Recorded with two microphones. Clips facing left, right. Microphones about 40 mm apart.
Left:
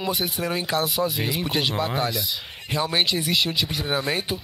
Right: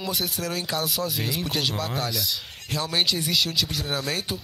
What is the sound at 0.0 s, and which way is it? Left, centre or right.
Speech, left.